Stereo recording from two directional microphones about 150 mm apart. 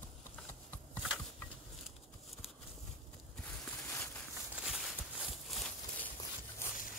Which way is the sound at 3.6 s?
10° left (ahead or behind).